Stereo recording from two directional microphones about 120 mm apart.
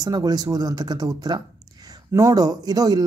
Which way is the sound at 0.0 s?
35° right (ahead or behind).